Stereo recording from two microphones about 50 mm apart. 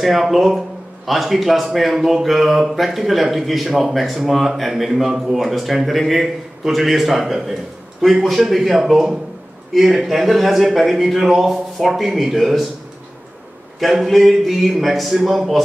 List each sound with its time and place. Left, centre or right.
0.0 s speech: centre
13.7 s speech: centre